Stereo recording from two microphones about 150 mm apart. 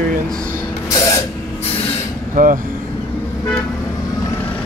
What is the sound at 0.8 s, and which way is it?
Spray, 20° left (ahead or behind).